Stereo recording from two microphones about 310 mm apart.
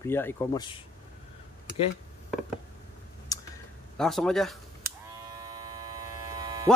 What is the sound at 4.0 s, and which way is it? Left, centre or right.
Speech, centre.